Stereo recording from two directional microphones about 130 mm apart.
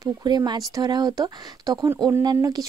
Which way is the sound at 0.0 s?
30° right (ahead or behind).